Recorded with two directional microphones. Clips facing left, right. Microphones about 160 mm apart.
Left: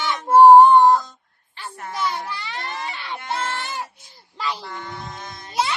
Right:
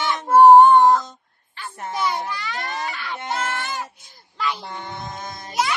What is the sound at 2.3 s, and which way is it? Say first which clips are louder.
Baby cry: right 2 dB; 25° left (ahead or behind).